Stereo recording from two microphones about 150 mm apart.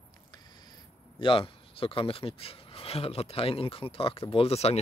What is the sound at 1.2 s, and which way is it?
Speech, 35° left (ahead or behind).